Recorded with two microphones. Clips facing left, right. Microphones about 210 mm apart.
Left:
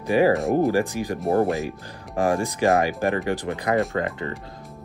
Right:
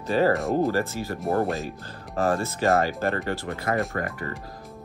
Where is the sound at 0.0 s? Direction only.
15° left (ahead or behind).